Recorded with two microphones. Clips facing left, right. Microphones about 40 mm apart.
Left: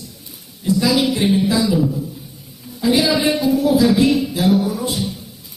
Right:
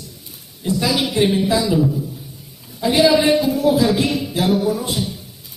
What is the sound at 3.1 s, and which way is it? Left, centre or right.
Speech, right.